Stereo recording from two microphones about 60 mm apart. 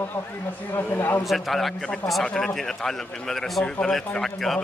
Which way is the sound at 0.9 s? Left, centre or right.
Left.